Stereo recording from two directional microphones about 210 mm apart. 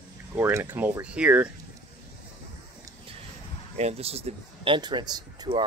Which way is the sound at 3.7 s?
30° right (ahead or behind).